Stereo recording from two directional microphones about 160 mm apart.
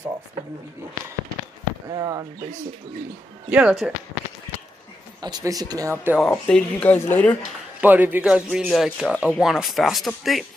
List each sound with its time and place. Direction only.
1.9 s a sound: 25° right (ahead or behind)
3.4 s speech: 10° right (ahead or behind)
5.2 s speech: 25° right (ahead or behind)
6.1 s speech: 5° left (ahead or behind)
7.8 s speech: 10° right (ahead or behind)